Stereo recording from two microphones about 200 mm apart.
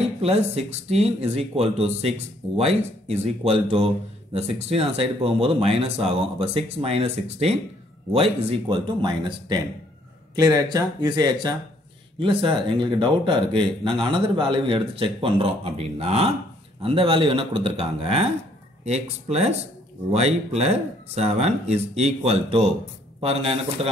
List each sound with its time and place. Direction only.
0.2 s speech: 30° right (ahead or behind)